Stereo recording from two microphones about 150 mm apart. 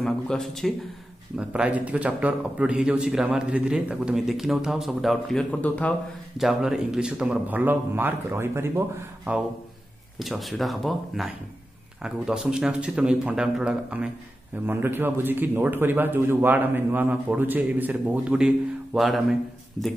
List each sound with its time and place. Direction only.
0.0 s a man's voice: 5° left (ahead or behind)
6.3 s a man's voice: 5° right (ahead or behind)
10.1 s a man's voice: centre (ahead or behind)